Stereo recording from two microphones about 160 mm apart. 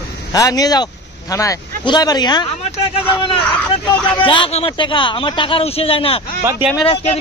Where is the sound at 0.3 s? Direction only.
25° left (ahead or behind).